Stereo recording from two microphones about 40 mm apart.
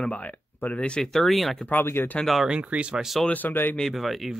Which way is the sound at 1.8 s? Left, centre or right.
Left.